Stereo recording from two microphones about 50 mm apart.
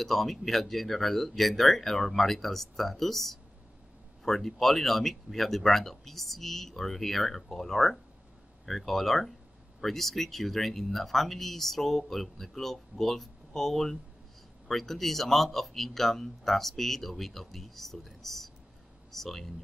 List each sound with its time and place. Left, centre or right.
0.0 s speech: centre